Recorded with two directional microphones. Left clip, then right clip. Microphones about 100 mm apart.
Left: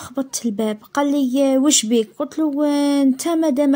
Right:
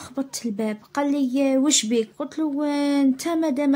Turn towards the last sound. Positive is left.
turn(degrees=50)  # may be behind; listen again after turning